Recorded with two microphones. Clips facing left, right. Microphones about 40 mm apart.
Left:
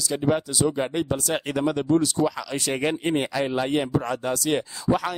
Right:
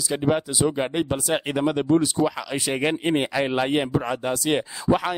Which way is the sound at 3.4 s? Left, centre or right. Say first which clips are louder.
Right 2 dB; right.